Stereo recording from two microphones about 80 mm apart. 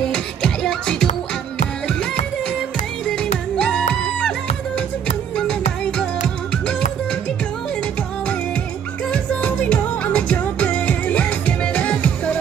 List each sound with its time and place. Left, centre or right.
0.1 s music: centre
3.1 s music: centre
5.3 s music: centre
9.1 s music: centre